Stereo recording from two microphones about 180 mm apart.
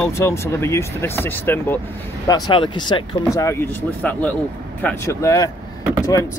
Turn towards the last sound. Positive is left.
turn(degrees=15)  # may be behind; listen again after turning